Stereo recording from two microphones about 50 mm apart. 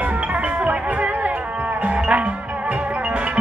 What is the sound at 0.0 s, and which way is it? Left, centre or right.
Music, right.